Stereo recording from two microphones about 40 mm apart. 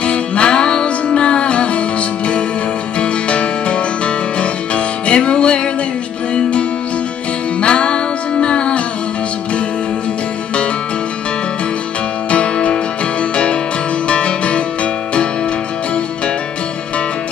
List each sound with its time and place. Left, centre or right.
0.0 s music: left
3.0 s music: left
7.6 s music: left
12.3 s music: left
14.0 s music: left